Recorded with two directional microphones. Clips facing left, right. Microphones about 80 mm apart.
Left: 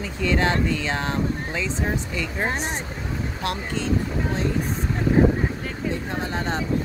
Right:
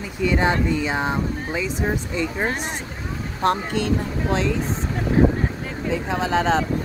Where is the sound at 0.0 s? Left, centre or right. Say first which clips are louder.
Right 2 dB; centre.